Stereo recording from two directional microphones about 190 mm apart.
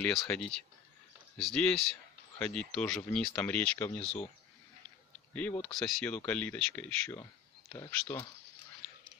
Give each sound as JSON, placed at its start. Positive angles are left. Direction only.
{"t": 0.0, "sound": "speech", "side_deg": 5}
{"t": 5.6, "sound": "speech", "side_deg": 0}